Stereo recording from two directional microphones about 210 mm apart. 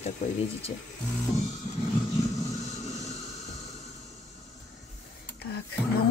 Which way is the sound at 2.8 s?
30° left (ahead or behind).